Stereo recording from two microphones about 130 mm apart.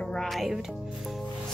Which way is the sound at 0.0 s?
5° left (ahead or behind).